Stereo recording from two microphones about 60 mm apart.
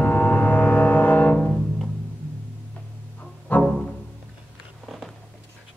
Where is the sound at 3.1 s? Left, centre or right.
Left.